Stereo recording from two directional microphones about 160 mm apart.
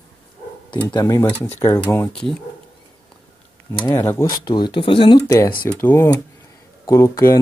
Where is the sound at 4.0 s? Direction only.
15° left (ahead or behind).